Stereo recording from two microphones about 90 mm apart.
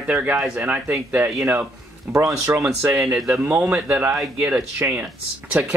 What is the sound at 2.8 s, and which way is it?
Speech, 20° right (ahead or behind).